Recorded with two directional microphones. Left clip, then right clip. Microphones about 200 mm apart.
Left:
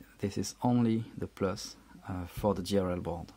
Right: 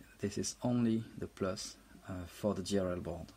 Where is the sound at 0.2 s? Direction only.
30° left (ahead or behind).